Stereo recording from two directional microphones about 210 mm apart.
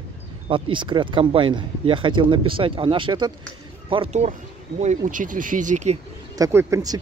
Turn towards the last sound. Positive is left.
turn(degrees=-15)  # may be behind; listen again after turning